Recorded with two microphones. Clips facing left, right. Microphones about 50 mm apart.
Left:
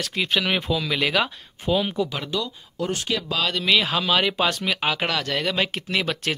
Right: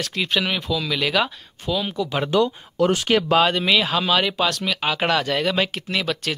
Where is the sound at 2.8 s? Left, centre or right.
Right.